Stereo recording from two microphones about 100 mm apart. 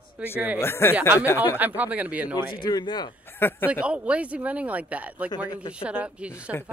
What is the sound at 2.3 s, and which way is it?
Speech, 45° left (ahead or behind).